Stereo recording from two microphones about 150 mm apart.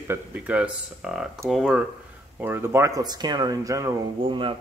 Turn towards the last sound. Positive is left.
turn(degrees=-35)  # may be behind; listen again after turning